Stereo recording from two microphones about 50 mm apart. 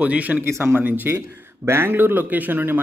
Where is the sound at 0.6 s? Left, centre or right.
Right.